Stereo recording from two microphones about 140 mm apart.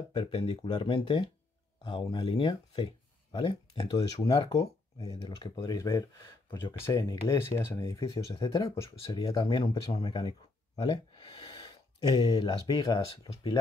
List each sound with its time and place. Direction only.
0.1 s speech: 35° left (ahead or behind)
5.6 s speech: 25° left (ahead or behind)